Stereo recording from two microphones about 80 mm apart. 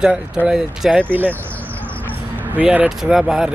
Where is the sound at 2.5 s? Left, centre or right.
Centre.